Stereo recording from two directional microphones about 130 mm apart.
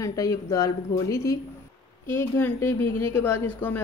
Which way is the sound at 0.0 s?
25° left (ahead or behind).